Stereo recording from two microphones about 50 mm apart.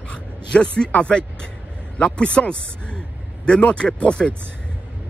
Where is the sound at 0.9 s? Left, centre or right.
Centre.